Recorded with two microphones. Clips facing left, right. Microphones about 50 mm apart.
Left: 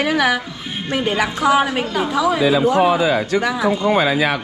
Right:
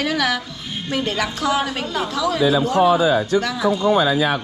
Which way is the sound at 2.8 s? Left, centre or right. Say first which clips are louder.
Even; left.